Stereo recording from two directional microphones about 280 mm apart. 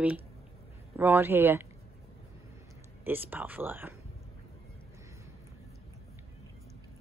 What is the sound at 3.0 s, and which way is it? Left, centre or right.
Speech, centre.